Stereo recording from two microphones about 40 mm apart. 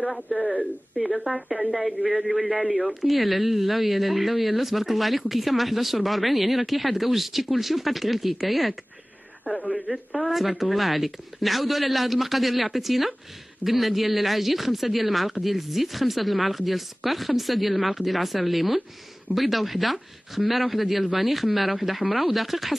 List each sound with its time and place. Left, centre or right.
0.9 s speech: centre
1.3 s a woman's voice: right
2.9 s speech: centre
9.5 s a woman's voice: right
9.8 s a woman's voice: centre
10.3 s speech: centre